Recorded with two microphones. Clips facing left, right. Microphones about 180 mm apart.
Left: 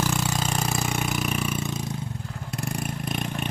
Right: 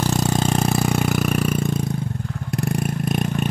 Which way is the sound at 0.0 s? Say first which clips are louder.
Right 6 dB; 40° right (ahead or behind).